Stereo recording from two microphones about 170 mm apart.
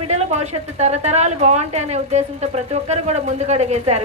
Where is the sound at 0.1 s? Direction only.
40° right (ahead or behind).